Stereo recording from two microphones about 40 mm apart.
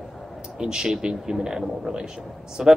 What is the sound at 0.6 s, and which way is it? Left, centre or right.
Speech, centre.